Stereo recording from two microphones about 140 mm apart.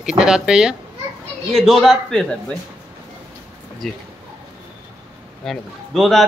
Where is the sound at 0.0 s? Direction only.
5° right (ahead or behind).